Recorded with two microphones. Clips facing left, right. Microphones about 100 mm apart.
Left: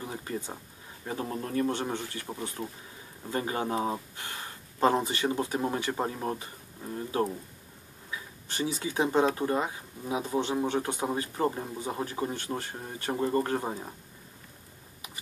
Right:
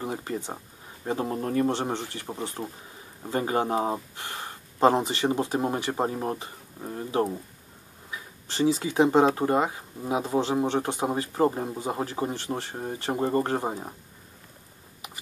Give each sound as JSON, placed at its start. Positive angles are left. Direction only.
{"t": 1.0, "sound": "speech", "side_deg": -25}
{"t": 8.5, "sound": "speech", "side_deg": -30}